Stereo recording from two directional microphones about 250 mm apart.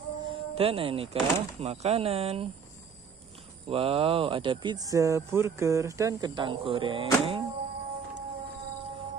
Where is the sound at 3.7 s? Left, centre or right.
Right.